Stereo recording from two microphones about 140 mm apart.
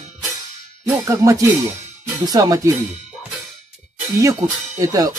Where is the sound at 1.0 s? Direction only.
25° right (ahead or behind).